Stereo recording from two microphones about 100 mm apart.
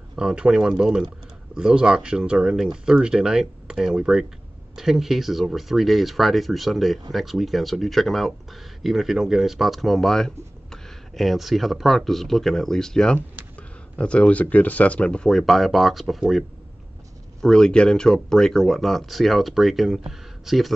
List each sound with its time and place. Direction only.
0.1 s speech: 10° right (ahead or behind)